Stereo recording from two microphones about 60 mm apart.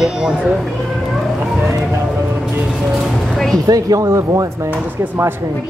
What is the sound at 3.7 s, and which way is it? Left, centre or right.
Speech, right.